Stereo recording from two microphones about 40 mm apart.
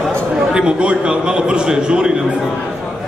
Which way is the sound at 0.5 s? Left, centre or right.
Right.